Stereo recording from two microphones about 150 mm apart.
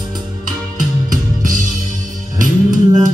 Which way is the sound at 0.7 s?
65° right (ahead or behind).